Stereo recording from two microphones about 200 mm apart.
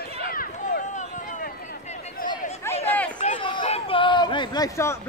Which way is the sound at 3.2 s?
25° left (ahead or behind).